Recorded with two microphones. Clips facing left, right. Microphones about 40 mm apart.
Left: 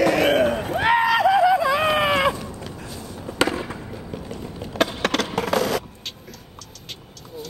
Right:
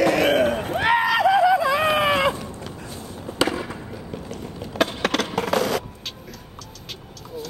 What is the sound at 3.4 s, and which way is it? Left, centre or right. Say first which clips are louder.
Fireworks: left 1 dB; left.